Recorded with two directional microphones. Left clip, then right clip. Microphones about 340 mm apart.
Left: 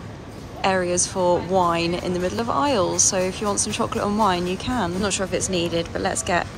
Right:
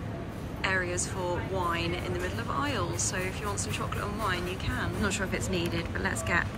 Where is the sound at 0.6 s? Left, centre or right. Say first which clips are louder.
Left 9 dB; centre.